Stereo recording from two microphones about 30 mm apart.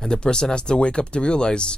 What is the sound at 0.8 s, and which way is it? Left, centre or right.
Speech, left.